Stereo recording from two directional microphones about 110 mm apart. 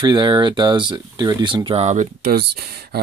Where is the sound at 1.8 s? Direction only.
90° right.